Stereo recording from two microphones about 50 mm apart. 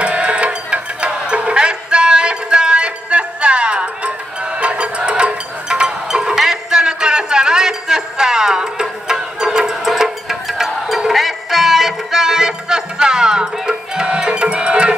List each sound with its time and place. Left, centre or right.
0.0 s music: right